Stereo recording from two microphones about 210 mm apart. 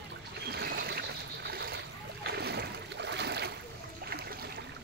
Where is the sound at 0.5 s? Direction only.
50° right (ahead or behind).